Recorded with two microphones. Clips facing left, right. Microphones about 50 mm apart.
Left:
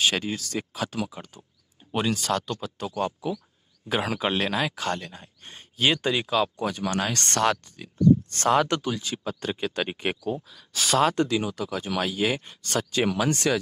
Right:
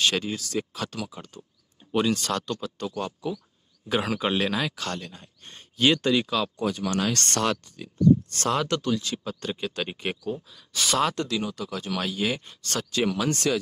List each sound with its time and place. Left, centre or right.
0.0 s speech: centre
2.9 s speech: left
3.9 s speech: centre
4.7 s speech: centre
6.5 s speech: left
7.2 s speech: left
8.8 s speech: centre
10.3 s speech: centre
11.1 s speech: centre